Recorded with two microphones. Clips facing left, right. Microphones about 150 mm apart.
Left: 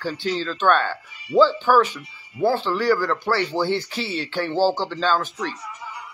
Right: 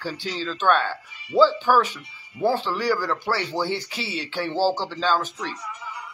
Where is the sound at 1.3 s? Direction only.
10° right (ahead or behind).